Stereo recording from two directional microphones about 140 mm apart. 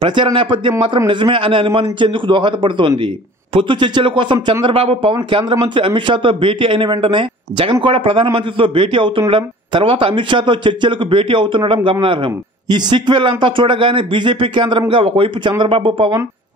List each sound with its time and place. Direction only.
0.0 s a man's voice: 35° right (ahead or behind)